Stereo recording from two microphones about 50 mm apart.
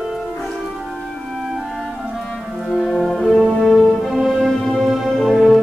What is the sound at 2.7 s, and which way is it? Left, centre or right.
Music, centre.